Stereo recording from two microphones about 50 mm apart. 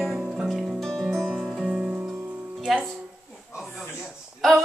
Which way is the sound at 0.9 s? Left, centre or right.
Centre.